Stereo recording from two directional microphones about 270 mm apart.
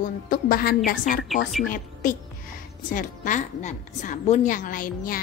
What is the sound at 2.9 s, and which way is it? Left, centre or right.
A woman's voice, left.